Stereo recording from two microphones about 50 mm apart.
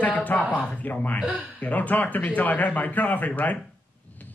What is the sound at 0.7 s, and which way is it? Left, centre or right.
Speech, left.